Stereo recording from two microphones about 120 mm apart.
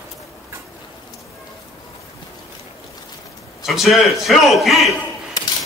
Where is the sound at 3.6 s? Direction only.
Centre (ahead or behind).